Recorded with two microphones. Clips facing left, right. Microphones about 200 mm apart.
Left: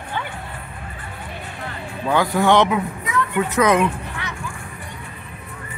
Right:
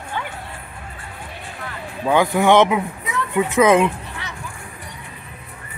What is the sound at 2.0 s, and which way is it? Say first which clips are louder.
A man's voice: right 2 dB; 15° right (ahead or behind).